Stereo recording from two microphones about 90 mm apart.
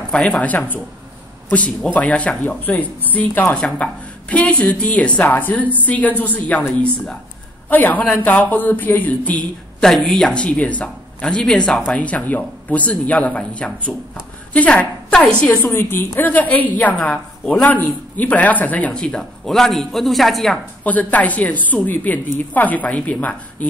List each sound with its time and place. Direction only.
0.1 s a woman's voice: 10° left (ahead or behind)
9.8 s a woman's voice: 5° left (ahead or behind)
15.7 s a woman's voice: 25° left (ahead or behind); by 20.5 s centre (ahead or behind)
20.8 s a woman's voice: 15° left (ahead or behind)